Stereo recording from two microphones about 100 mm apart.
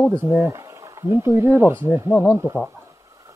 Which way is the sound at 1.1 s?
25° right (ahead or behind).